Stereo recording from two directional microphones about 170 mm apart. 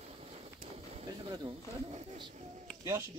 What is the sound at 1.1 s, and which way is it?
Speech, 25° right (ahead or behind).